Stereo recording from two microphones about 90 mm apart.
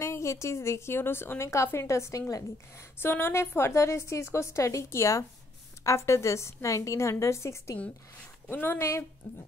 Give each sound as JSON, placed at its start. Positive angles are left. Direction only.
{"t": 0.0, "sound": "a woman's voice", "side_deg": 35}